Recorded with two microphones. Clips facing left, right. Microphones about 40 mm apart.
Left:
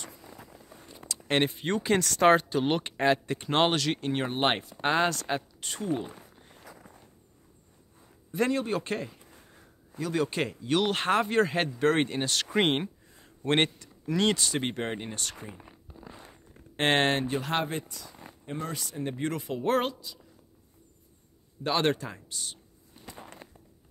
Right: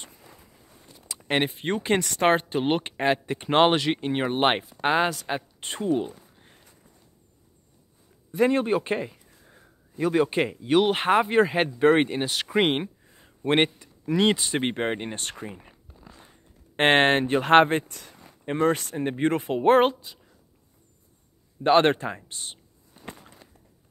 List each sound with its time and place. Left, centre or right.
0.4 s walk: left
1.0 s a sound: centre
1.6 s speech: right; by 5.4 s centre
5.6 s speech: right
6.6 s walk: left
8.5 s speech: right
15.7 s walk: centre
16.7 s speech: right
21.6 s speech: right
23.4 s walk: left